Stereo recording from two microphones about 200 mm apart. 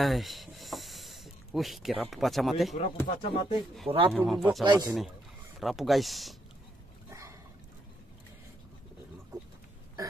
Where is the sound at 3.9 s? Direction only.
25° right (ahead or behind).